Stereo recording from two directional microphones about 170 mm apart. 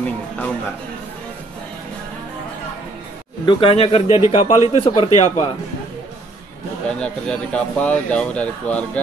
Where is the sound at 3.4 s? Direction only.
35° left (ahead or behind).